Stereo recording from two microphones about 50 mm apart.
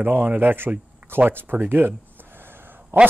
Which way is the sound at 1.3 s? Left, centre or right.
Right.